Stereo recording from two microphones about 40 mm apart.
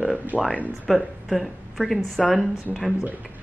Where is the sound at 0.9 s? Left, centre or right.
Centre.